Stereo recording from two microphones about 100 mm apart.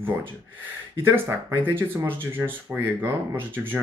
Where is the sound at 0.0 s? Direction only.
20° right (ahead or behind).